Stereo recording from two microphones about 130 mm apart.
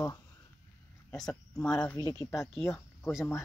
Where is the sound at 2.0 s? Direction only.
30° left (ahead or behind).